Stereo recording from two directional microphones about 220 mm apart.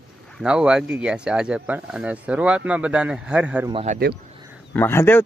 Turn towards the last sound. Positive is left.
turn(degrees=10)  # may be behind; listen again after turning